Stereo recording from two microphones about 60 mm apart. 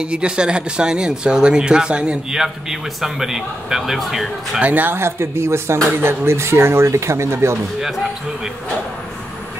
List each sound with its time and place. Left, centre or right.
0.0 s speech: centre
4.6 s speech: right
4.9 s speech: right